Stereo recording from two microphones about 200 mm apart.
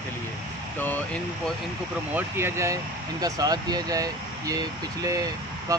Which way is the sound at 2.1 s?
10° right (ahead or behind).